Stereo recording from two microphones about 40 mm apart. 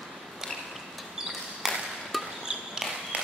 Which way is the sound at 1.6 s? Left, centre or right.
Centre.